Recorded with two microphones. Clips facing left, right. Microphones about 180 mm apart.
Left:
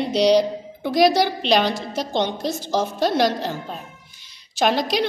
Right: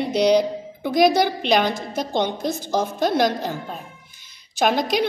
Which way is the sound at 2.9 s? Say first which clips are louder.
Even; 50° right (ahead or behind).